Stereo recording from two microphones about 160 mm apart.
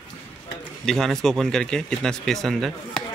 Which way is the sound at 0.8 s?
Centre (ahead or behind).